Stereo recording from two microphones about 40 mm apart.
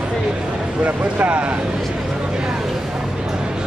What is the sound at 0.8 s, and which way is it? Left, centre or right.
Speech, right.